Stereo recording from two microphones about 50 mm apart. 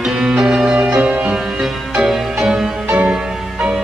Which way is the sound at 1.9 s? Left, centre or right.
Centre.